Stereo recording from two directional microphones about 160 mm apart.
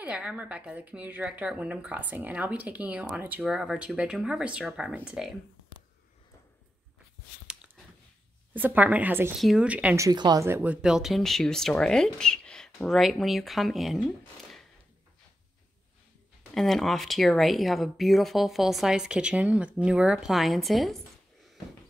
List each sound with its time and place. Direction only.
0.0 s speech: 5° right (ahead or behind)
8.5 s speech: 10° right (ahead or behind)
10.0 s speech: 25° right (ahead or behind)
10.4 s speech: 15° right (ahead or behind)
16.5 s speech: centre (ahead or behind)